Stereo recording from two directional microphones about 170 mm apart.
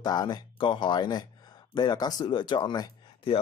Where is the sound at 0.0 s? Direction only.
25° left (ahead or behind).